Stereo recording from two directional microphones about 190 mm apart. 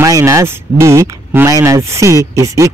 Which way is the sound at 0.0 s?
15° right (ahead or behind).